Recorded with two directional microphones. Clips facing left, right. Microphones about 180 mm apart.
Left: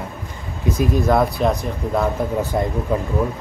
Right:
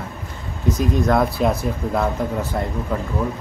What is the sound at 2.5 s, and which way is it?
Speech, 15° left (ahead or behind).